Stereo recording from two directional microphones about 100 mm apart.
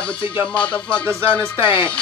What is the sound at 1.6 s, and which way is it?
Speech, 55° left (ahead or behind).